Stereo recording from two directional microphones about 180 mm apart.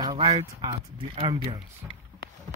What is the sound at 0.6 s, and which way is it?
Speech, 25° right (ahead or behind).